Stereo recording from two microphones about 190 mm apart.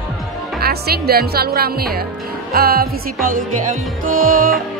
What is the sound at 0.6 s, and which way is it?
Speech, 55° right (ahead or behind).